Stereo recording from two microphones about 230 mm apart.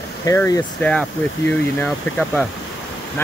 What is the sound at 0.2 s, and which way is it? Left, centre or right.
Speech, centre.